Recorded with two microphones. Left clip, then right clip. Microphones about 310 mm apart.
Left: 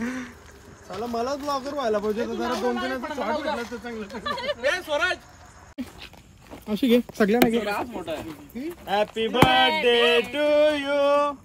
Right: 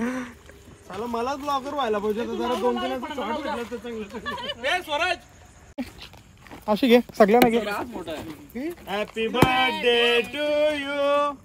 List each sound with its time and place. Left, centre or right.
0.0 s a sound: centre
1.1 s speech: centre
2.0 s speech: centre
6.7 s speech: right
7.1 s speech: centre
8.8 s a sound: centre